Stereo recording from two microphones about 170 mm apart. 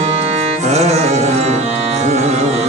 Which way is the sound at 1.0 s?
40° right (ahead or behind).